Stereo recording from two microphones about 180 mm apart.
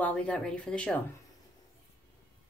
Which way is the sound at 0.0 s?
5° left (ahead or behind).